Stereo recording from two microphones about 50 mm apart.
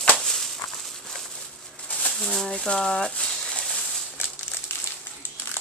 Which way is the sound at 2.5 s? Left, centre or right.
Centre.